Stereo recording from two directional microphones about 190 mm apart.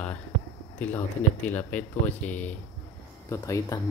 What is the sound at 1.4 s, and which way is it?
Speech, 10° left (ahead or behind).